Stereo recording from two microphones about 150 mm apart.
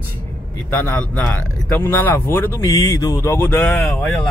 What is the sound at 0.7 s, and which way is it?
Speech, 15° left (ahead or behind).